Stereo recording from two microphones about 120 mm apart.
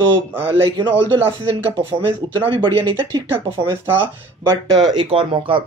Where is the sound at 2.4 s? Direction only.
45° right (ahead or behind).